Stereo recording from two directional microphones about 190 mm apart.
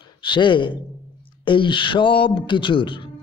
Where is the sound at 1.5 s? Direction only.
25° left (ahead or behind).